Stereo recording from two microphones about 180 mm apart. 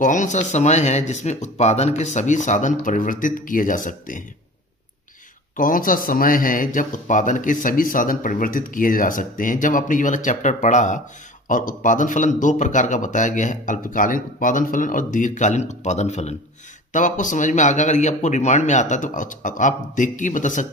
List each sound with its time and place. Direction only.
0.0 s speech: 45° left (ahead or behind)
5.6 s speech: 50° left (ahead or behind)